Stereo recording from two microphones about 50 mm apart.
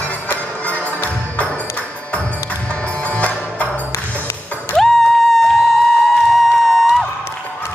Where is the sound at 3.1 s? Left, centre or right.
Left.